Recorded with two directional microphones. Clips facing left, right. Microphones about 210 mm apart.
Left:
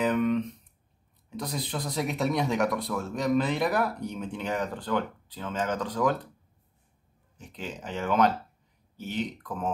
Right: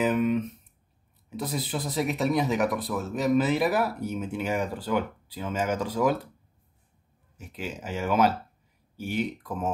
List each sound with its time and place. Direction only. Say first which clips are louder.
0.0 s a sound: right 1 dB; 5° right (ahead or behind)
1.3 s speech: right 2 dB; 5° right (ahead or behind)
7.3 s speech: right 2 dB; 10° right (ahead or behind)